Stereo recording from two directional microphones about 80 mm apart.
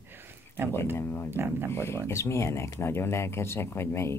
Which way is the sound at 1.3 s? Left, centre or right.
Right.